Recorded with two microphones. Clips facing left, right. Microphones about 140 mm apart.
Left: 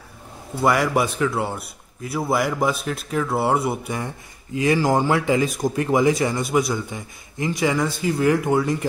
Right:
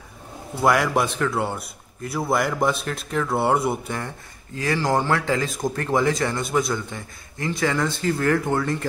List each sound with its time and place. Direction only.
0.6 s a man's voice: centre (ahead or behind)